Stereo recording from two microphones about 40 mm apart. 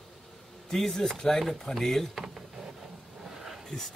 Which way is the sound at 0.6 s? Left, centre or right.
Centre.